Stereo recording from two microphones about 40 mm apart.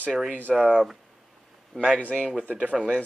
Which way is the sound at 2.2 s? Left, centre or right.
Centre.